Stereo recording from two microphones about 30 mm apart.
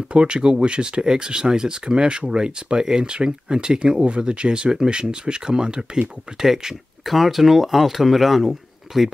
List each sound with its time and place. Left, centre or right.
0.1 s speech: right
6.4 s speech: centre